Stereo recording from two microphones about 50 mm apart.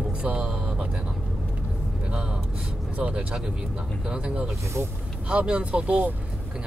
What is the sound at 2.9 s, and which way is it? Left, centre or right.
Speech, right.